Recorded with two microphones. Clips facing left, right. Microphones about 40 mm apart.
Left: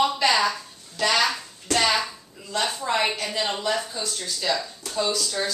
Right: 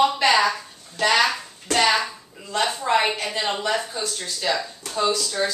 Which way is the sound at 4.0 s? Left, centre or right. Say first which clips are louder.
Right 2 dB; centre.